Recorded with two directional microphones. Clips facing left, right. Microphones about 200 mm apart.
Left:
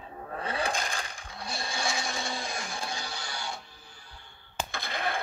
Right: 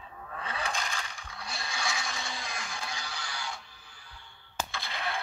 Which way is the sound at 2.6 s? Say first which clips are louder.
Left 3 dB; 45° left (ahead or behind).